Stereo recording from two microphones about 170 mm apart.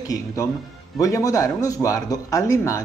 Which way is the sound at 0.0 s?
20° left (ahead or behind).